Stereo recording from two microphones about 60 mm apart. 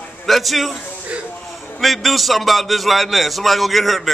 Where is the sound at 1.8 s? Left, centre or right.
Centre.